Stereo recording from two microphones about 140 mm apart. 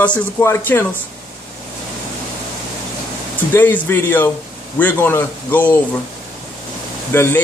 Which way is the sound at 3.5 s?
15° left (ahead or behind).